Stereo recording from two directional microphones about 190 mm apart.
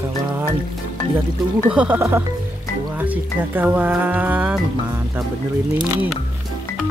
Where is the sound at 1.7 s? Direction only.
5° right (ahead or behind).